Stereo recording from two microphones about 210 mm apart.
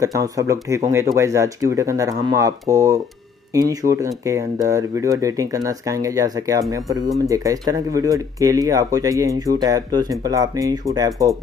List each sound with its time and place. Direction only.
0.0 s speech: 15° right (ahead or behind)